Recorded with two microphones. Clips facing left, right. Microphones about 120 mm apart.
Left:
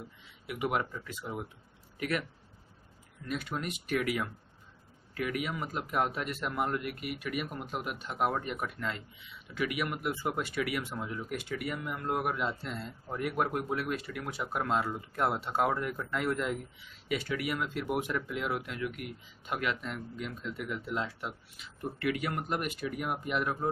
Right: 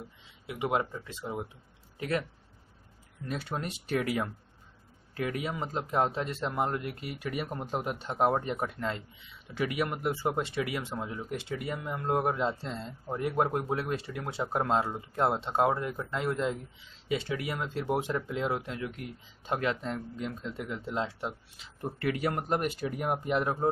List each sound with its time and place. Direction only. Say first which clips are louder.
0.5 s speech: right 2 dB; 25° right (ahead or behind)
3.3 s speech: right 1 dB; 35° right (ahead or behind)